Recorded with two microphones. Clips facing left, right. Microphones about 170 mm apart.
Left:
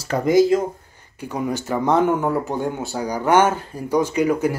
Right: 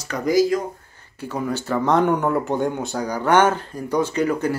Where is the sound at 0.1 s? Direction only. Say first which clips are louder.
Left 3 dB; 25° left (ahead or behind).